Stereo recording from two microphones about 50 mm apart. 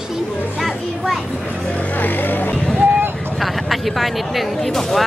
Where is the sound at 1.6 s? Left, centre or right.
Left.